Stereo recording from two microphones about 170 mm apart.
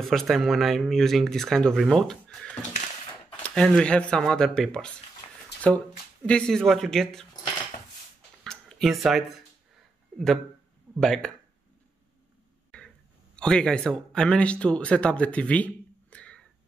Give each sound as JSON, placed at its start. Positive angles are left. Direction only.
{"t": 0.0, "sound": "speech", "side_deg": 0}
{"t": 5.2, "sound": "a sound", "side_deg": 35}
{"t": 5.6, "sound": "speech", "side_deg": 5}
{"t": 8.5, "sound": "a sound", "side_deg": 0}
{"t": 10.1, "sound": "speech", "side_deg": 0}
{"t": 13.4, "sound": "speech", "side_deg": 5}